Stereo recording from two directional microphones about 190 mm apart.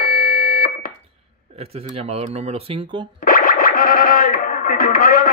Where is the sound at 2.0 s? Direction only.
35° right (ahead or behind).